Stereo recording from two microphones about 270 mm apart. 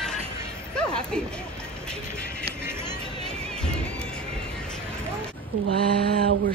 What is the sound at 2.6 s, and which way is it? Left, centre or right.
Music, centre.